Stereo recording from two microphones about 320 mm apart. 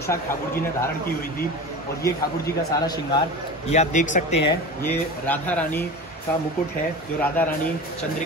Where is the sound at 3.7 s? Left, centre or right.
Left.